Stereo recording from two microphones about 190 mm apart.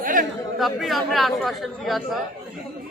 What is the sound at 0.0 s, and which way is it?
Chatter, 45° right (ahead or behind).